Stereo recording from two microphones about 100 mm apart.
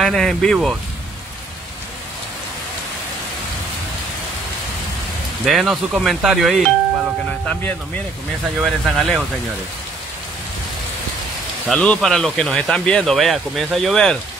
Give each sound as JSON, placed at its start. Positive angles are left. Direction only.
{"t": 0.0, "sound": "speech", "side_deg": 5}
{"t": 5.4, "sound": "speech", "side_deg": 0}
{"t": 7.4, "sound": "speech", "side_deg": 15}
{"t": 8.6, "sound": "speech", "side_deg": 0}
{"t": 11.7, "sound": "speech", "side_deg": 5}